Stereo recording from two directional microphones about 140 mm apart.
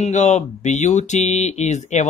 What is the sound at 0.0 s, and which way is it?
Speech, 55° left (ahead or behind).